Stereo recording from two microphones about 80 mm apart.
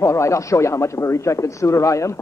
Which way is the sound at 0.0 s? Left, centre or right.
Left.